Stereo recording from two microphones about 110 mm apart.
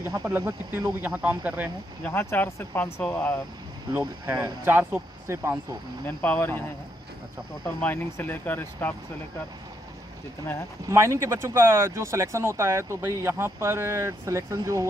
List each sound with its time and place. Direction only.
0.2 s speech: 25° right (ahead or behind)
0.7 s speech: 10° right (ahead or behind)
2.0 s speech: 20° left (ahead or behind)
4.3 s speech: 20° right (ahead or behind)
6.0 s speech: 15° left (ahead or behind)
7.8 s speech: 15° left (ahead or behind)
10.9 s speech: 25° right (ahead or behind)